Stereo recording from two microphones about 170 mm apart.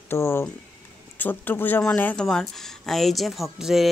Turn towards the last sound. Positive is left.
turn(degrees=0)  # may be behind; listen again after turning